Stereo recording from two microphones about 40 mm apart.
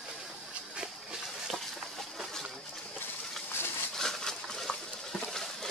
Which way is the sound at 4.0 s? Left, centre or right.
Centre.